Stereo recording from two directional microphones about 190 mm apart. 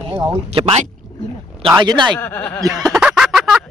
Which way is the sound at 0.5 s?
30° right (ahead or behind).